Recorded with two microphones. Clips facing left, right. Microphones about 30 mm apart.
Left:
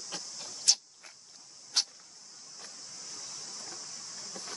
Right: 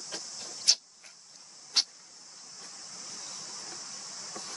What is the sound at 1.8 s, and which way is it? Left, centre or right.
Hiss, right.